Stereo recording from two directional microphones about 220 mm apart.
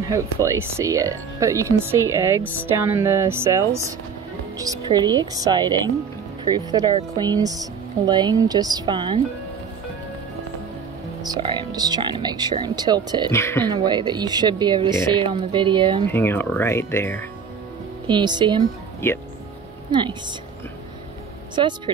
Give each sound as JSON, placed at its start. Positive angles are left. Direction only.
{"t": 0.0, "sound": "speech", "side_deg": -15}
{"t": 11.2, "sound": "speech", "side_deg": -20}
{"t": 13.3, "sound": "speech", "side_deg": 10}
{"t": 13.7, "sound": "speech", "side_deg": -20}
{"t": 16.1, "sound": "speech", "side_deg": 10}
{"t": 18.0, "sound": "speech", "side_deg": -20}
{"t": 19.9, "sound": "speech", "side_deg": -20}
{"t": 21.5, "sound": "speech", "side_deg": -20}